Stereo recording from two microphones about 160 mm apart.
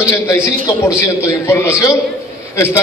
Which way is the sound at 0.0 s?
15° left (ahead or behind).